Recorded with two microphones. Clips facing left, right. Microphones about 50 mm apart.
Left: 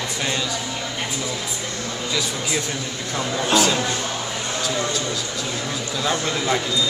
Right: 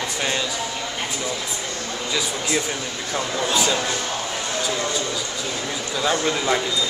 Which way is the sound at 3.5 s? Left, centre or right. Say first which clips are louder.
Left 4 dB; centre.